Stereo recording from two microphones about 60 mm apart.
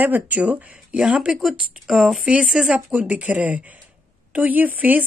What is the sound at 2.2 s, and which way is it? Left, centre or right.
Speech, centre.